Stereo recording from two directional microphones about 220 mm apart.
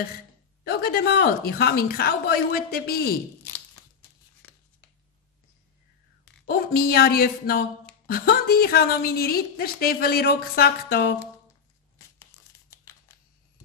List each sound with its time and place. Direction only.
0.7 s a woman's voice: 45° left (ahead or behind)
6.4 s a woman's voice: 45° left (ahead or behind)
12.2 s tearing: 15° left (ahead or behind)